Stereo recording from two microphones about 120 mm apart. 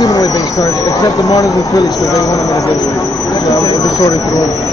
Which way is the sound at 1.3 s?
35° left (ahead or behind).